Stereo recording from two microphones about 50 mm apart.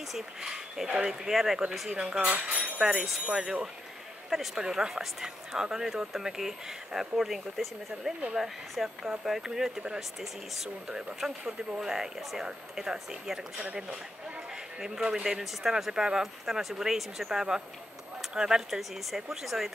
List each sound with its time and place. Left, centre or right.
0.1 s speech: centre
2.4 s jingle bell: centre
2.9 s speech: centre
4.6 s speech: centre
7.9 s speech: right
8.4 s speech: centre
10.9 s speech: right
11.8 s speech: centre
14.8 s speech: centre